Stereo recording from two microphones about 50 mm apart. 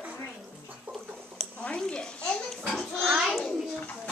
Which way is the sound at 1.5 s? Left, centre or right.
Left.